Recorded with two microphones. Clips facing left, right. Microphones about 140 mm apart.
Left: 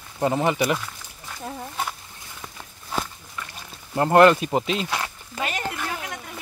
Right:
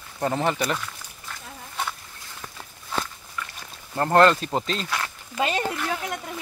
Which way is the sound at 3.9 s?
15° left (ahead or behind).